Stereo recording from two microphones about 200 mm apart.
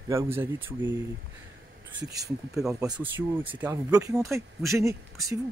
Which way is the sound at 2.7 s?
20° right (ahead or behind).